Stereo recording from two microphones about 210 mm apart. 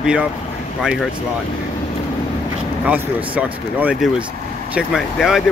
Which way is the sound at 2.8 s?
5° right (ahead or behind).